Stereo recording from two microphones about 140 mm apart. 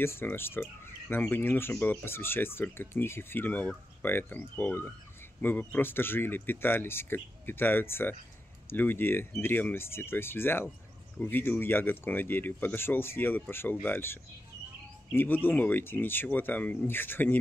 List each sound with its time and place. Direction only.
0.0 s speech: 15° left (ahead or behind)